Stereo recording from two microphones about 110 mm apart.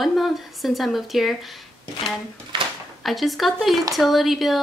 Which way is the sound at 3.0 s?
Centre (ahead or behind).